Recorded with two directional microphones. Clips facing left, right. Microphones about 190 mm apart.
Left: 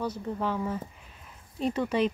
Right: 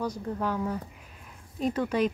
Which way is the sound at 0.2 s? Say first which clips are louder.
Even; centre (ahead or behind).